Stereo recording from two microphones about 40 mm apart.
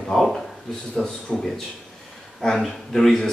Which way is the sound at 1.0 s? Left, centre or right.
Left.